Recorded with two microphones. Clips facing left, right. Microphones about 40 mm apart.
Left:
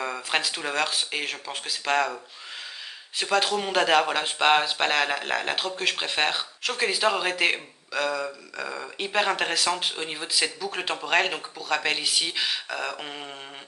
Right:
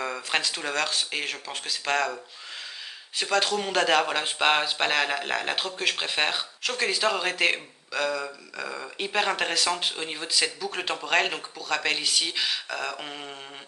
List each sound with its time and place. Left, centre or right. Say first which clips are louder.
0.0 s speech: left 1 dB; centre
3.2 s speech: left 1 dB; centre